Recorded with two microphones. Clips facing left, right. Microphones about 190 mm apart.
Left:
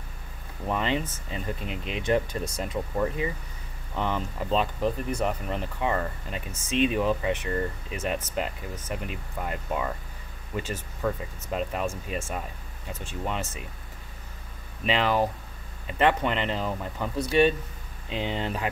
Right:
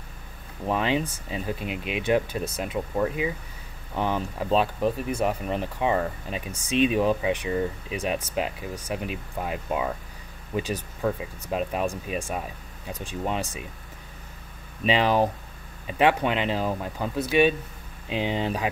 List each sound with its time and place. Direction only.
0.7 s speech: 15° right (ahead or behind)
14.9 s speech: 20° right (ahead or behind)